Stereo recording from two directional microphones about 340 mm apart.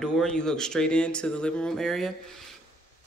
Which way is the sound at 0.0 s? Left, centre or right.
Centre.